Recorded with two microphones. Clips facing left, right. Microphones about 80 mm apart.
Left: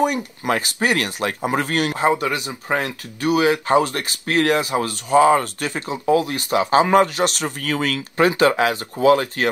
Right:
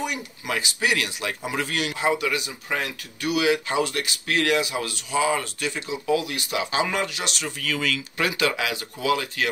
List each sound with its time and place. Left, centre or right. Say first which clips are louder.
0.0 s speech: left 10 dB; left